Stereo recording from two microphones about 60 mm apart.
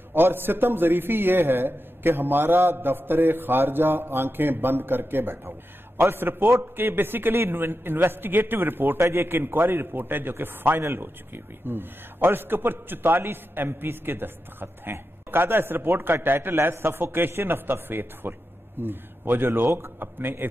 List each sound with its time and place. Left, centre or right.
0.1 s a man's voice: right